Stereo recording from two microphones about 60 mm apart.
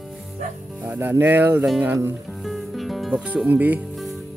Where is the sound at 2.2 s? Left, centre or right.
Centre.